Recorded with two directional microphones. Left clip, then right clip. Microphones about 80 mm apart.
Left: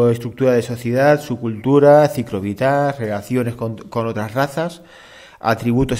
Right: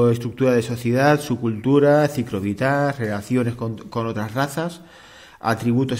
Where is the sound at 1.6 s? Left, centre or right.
Left.